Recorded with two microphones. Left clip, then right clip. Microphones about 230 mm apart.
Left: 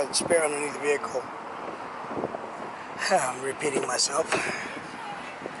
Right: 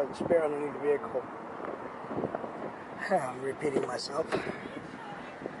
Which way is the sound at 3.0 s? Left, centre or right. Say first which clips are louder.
Left 5 dB; centre.